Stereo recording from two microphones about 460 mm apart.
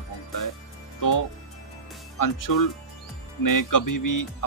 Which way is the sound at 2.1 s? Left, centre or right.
Left.